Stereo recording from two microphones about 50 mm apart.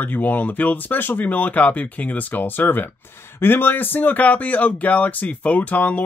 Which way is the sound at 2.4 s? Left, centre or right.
Left.